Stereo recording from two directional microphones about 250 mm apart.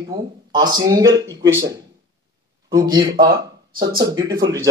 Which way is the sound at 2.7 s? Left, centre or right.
Centre.